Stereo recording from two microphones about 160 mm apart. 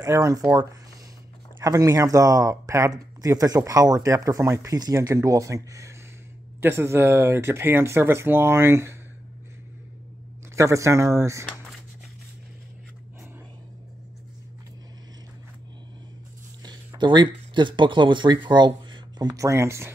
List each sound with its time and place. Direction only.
0.0 s speech: 20° right (ahead or behind)
10.5 s speech: 20° right (ahead or behind)
17.0 s speech: 30° right (ahead or behind)